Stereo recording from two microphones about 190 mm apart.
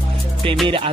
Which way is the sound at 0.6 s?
25° right (ahead or behind).